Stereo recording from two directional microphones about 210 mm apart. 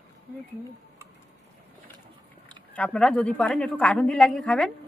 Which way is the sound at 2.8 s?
5° left (ahead or behind).